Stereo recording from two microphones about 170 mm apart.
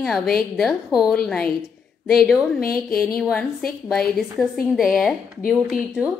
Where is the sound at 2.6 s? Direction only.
60° left (ahead or behind).